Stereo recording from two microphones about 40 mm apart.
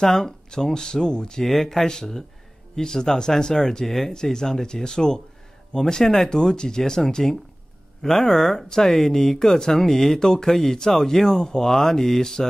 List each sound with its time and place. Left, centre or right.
0.0 s speech: centre
1.4 s speech: centre
3.8 s speech: centre